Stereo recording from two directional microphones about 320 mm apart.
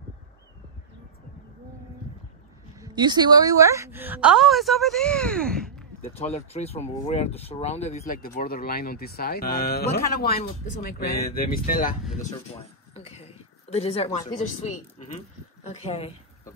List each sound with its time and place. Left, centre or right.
2.8 s a woman's voice: centre
6.0 s speech: centre
12.2 s a sound: centre
14.6 s speech: left